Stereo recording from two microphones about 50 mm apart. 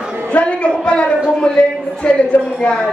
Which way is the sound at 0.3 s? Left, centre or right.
Left.